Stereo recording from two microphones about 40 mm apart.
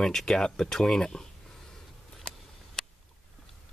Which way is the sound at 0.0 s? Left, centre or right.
Centre.